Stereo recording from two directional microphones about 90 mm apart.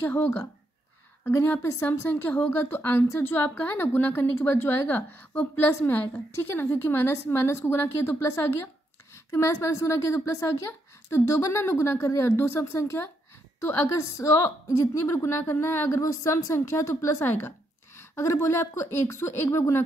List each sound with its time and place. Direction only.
0.0 s a woman's voice: 25° left (ahead or behind)